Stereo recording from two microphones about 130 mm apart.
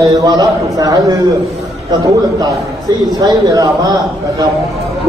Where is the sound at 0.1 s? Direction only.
30° right (ahead or behind).